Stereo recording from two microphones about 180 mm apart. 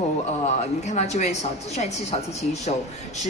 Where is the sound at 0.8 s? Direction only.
40° left (ahead or behind).